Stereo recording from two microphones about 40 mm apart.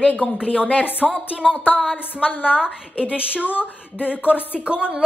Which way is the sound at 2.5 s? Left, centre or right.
Centre.